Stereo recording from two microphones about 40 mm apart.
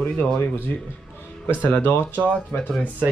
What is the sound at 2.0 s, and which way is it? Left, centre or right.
Speech, left.